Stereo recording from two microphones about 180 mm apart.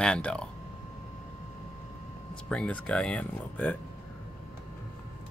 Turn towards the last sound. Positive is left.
turn(degrees=10)  # may be behind; listen again after turning